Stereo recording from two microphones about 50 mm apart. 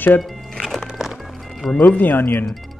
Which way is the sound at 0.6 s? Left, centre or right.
Centre.